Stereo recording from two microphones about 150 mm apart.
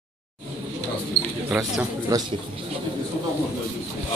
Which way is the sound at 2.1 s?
20° right (ahead or behind).